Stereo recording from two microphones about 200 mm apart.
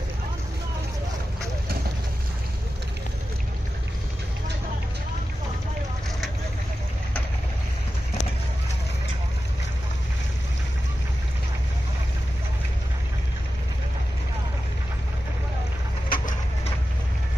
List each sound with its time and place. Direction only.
16.1 s bird: 40° left (ahead or behind)